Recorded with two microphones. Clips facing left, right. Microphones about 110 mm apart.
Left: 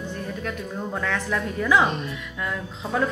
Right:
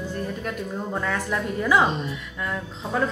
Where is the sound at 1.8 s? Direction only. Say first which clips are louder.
Right 1 dB; 25° right (ahead or behind).